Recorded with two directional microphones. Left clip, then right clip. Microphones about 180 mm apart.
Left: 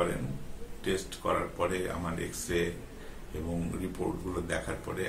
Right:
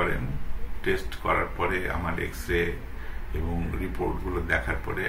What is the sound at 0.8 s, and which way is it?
Speech, 5° left (ahead or behind).